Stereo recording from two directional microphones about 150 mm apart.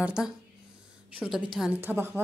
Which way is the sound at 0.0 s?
5° right (ahead or behind).